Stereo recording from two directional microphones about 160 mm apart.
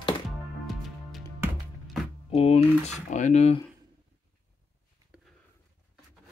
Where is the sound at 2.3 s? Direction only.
40° left (ahead or behind).